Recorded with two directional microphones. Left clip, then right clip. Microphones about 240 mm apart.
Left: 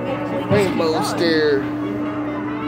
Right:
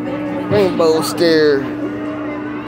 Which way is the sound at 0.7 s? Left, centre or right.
Right.